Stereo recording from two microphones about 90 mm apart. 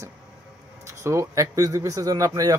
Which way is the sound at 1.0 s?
35° right (ahead or behind).